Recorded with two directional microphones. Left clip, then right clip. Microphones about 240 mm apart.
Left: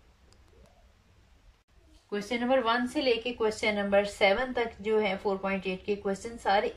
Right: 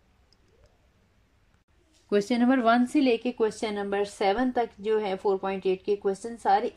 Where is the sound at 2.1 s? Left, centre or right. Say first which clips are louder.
Right 4 dB; right.